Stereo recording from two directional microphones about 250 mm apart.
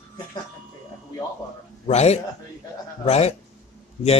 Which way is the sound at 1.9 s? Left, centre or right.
Left.